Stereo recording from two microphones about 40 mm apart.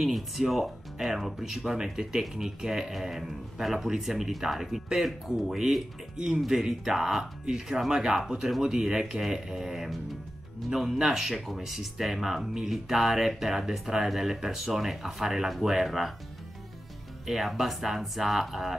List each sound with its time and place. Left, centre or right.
0.0 s speech: centre
17.3 s speech: centre